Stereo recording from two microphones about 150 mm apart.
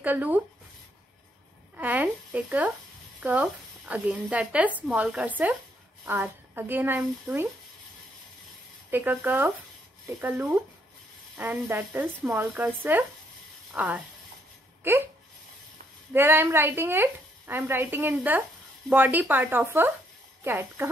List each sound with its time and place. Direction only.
0.0 s speech: 10° right (ahead or behind)
1.8 s speech: 10° right (ahead or behind)
8.9 s speech: 10° right (ahead or behind)
16.1 s speech: 15° right (ahead or behind)